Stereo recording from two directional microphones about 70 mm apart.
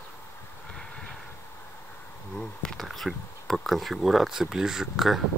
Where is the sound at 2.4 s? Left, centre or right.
Centre.